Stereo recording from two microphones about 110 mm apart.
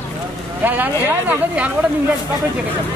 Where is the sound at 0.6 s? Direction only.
15° right (ahead or behind).